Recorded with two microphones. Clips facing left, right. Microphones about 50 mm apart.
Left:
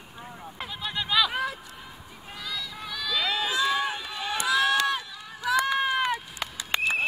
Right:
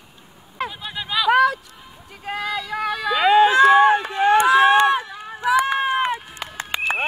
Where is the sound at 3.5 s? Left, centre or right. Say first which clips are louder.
Right 14 dB; right.